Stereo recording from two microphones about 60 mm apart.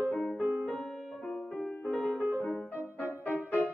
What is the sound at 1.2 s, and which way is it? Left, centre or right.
Music, centre.